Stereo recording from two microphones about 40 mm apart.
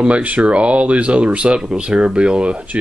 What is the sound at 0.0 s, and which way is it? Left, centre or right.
Speech, right.